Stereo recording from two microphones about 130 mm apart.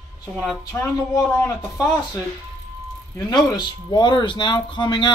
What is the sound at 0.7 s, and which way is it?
Speech, 20° left (ahead or behind).